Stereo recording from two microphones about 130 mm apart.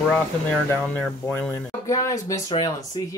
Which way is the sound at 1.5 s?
25° left (ahead or behind).